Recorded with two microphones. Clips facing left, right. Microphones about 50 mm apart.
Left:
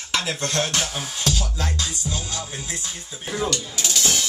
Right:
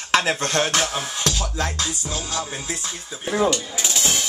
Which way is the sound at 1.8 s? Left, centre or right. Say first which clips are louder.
Right 1 dB; right.